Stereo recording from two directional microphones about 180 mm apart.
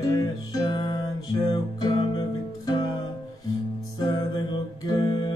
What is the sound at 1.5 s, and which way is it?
Guitar, 25° left (ahead or behind).